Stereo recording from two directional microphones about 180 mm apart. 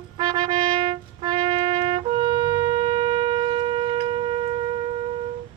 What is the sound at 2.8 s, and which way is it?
Shofar, 30° right (ahead or behind).